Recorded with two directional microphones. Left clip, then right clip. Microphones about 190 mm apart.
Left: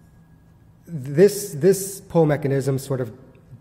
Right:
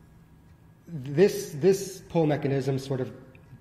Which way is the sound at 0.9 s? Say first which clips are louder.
Left 6 dB; 15° left (ahead or behind).